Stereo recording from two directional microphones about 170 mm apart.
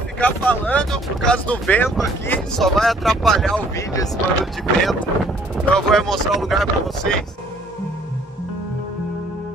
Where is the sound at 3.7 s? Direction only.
20° left (ahead or behind).